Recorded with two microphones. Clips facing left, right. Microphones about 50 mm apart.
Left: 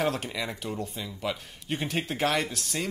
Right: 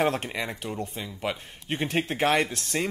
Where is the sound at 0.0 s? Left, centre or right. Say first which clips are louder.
Right 3 dB; right.